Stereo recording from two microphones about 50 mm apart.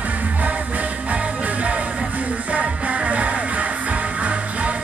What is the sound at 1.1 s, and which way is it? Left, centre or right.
Music, right.